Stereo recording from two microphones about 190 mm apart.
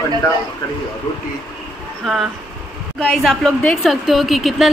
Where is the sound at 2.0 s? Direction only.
Centre (ahead or behind).